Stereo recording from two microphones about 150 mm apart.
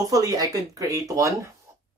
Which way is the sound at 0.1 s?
25° right (ahead or behind).